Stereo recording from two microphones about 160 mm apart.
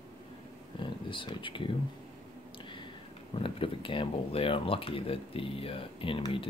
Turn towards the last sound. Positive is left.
turn(degrees=35)  # may be behind; listen again after turning